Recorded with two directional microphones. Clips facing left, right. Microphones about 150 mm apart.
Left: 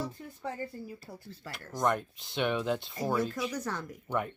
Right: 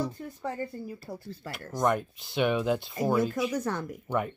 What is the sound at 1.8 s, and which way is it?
Speech, 5° right (ahead or behind).